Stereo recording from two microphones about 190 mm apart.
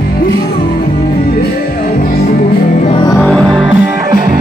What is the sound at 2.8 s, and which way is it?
Music, 25° left (ahead or behind).